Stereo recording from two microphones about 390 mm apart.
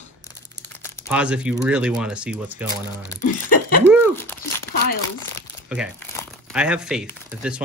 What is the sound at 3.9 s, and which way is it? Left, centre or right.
Crumpling, centre.